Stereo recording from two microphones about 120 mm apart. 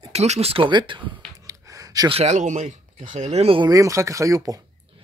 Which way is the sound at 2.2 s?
90° right.